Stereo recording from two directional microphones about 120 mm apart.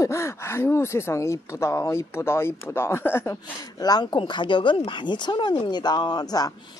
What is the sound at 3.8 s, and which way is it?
Speech, 35° left (ahead or behind).